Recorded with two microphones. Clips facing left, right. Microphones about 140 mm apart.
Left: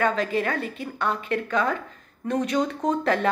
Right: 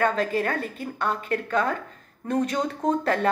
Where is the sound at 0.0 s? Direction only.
45° right (ahead or behind).